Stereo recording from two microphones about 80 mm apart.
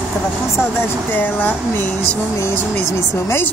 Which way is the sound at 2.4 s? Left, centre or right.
Left.